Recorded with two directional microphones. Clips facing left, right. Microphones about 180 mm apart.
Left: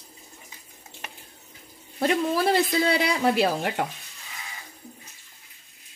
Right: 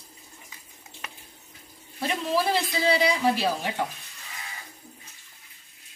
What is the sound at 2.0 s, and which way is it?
Speech, 55° left (ahead or behind).